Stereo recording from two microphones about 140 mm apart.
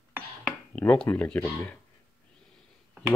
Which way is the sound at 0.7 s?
20° left (ahead or behind).